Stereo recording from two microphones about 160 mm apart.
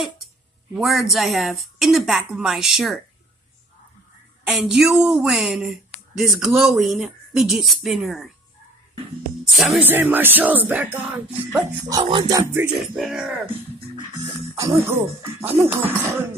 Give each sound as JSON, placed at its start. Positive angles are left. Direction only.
{"t": 0.7, "sound": "a woman's voice", "side_deg": 0}
{"t": 4.5, "sound": "a woman's voice", "side_deg": -5}
{"t": 9.4, "sound": "music", "side_deg": 0}
{"t": 9.8, "sound": "music", "side_deg": -10}
{"t": 11.9, "sound": "music", "side_deg": -30}
{"t": 12.9, "sound": "a woman's voice", "side_deg": -5}
{"t": 14.5, "sound": "music", "side_deg": -20}